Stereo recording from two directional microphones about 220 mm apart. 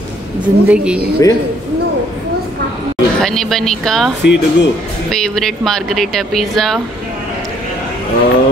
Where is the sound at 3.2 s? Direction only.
Centre (ahead or behind).